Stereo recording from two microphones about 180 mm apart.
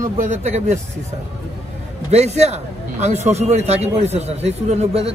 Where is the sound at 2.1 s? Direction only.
35° right (ahead or behind).